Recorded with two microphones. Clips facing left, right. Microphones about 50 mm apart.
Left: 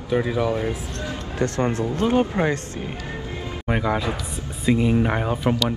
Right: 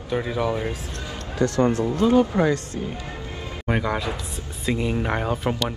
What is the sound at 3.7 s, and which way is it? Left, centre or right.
Speech, centre.